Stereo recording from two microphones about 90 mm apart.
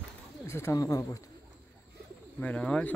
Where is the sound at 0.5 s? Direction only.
30° left (ahead or behind).